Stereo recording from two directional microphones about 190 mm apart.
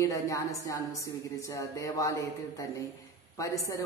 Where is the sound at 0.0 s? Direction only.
15° left (ahead or behind).